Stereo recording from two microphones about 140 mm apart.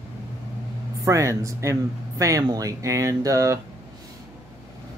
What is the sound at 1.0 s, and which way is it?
Speech, 20° right (ahead or behind).